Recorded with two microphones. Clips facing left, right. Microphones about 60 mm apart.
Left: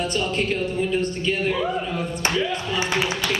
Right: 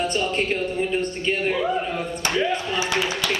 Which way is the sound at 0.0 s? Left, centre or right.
Centre.